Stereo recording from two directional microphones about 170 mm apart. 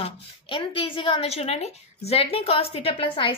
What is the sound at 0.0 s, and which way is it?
A woman's voice, 30° left (ahead or behind).